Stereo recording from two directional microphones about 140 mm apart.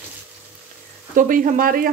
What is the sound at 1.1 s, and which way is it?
Speech, 70° right (ahead or behind).